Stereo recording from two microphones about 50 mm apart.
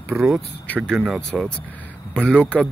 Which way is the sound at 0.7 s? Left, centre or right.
Left.